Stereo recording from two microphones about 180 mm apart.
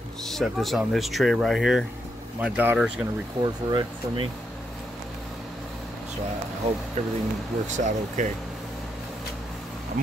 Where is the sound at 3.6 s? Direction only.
25° right (ahead or behind).